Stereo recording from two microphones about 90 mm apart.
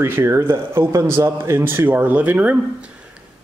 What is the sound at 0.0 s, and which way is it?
Speech, 25° right (ahead or behind).